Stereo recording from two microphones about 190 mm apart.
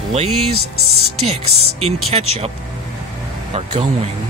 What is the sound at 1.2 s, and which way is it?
Speech, 30° right (ahead or behind).